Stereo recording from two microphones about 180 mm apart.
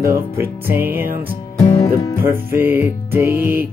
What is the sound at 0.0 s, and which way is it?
Music, 15° right (ahead or behind).